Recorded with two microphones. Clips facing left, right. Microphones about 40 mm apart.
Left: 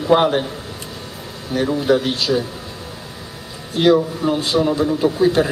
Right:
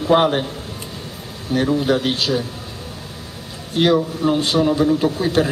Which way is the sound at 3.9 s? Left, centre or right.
Centre.